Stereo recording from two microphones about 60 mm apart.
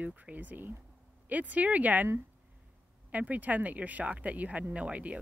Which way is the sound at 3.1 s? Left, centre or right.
Right.